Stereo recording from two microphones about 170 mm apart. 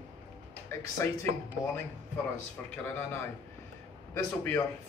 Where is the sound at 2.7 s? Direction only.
15° left (ahead or behind).